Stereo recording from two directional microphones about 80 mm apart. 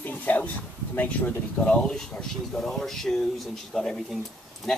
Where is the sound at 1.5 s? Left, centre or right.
Centre.